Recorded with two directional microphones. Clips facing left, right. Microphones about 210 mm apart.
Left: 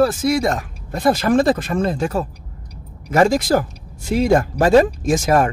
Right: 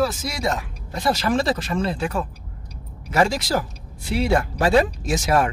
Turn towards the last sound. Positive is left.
turn(degrees=50)  # may be behind; listen again after turning